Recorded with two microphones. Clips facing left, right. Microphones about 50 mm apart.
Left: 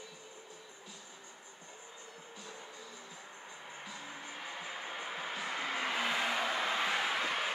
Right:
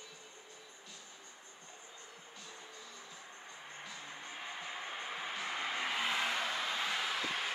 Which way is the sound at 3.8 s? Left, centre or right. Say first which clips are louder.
Left 2 dB; centre.